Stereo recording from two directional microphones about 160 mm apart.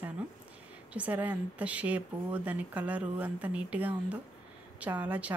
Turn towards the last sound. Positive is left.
turn(degrees=-10)  # may be behind; listen again after turning